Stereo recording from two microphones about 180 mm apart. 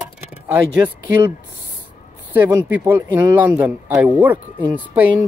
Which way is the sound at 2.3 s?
10° right (ahead or behind).